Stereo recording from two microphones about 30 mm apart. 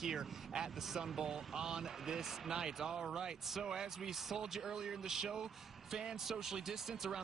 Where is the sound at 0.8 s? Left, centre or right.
Centre.